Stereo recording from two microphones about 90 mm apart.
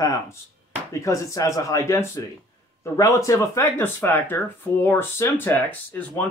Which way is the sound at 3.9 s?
20° left (ahead or behind).